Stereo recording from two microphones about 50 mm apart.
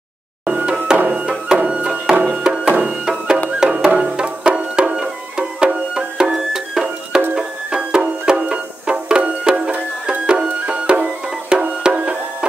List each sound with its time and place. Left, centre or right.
0.7 s music: right
2.9 s music: centre